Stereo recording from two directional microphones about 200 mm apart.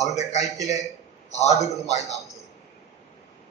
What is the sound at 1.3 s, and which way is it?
Speech, 35° left (ahead or behind).